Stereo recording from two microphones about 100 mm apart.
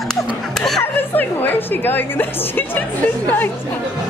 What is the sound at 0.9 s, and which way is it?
A woman's voice, 20° left (ahead or behind).